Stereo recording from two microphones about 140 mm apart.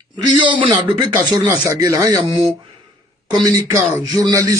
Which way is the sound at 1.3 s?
25° right (ahead or behind).